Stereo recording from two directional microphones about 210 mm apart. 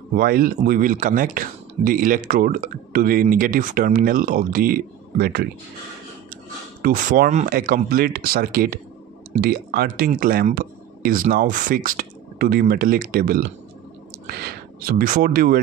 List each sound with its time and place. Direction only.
0.1 s speech: 45° right (ahead or behind)
6.8 s speech: 40° right (ahead or behind)